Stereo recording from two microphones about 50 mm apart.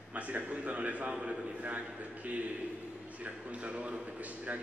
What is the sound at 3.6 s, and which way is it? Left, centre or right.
Speech, right.